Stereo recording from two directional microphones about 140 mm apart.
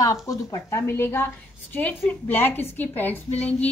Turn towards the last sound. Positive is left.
turn(degrees=10)  # may be behind; listen again after turning